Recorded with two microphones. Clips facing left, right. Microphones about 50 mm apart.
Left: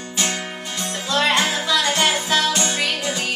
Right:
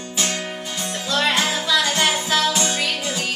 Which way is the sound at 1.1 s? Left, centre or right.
Centre.